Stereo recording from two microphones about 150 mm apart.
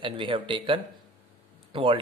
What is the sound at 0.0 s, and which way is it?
Speech, 35° right (ahead or behind).